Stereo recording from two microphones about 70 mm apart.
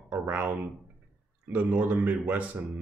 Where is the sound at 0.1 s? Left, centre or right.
Right.